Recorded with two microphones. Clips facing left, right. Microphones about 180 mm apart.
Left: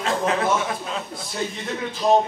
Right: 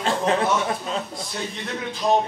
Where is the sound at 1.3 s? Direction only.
Centre (ahead or behind).